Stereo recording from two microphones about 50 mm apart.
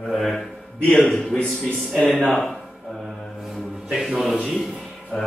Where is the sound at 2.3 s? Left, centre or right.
Centre.